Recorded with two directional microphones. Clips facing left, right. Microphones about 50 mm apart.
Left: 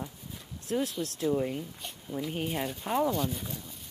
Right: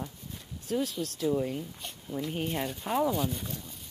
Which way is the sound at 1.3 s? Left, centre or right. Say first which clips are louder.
Even; centre.